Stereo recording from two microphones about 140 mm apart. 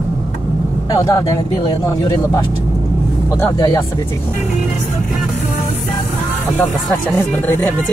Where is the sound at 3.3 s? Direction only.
20° left (ahead or behind).